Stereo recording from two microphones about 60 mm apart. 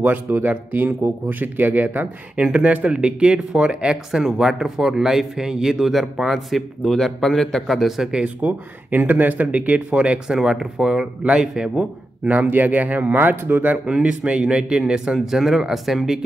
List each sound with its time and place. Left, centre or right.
0.0 s speech: right
2.3 s speech: centre
8.1 s speech: centre
8.9 s speech: right; by 11.9 s centre
12.3 s speech: right
13.8 s speech: centre